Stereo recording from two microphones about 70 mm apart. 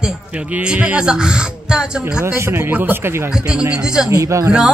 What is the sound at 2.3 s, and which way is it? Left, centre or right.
Speech, right.